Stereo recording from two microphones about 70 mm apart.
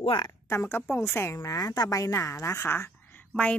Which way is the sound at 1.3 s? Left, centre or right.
Left.